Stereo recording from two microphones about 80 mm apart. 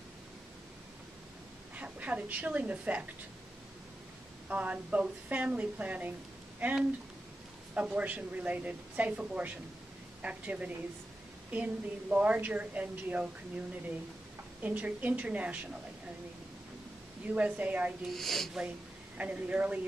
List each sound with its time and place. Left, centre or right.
1.8 s a woman's voice: centre
4.5 s a woman's voice: centre
14.6 s a woman's voice: centre
17.3 s a woman's voice: centre
18.1 s speech: centre
19.1 s a woman's voice: centre